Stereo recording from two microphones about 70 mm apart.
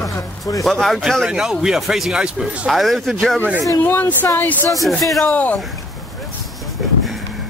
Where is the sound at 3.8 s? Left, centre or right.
Left.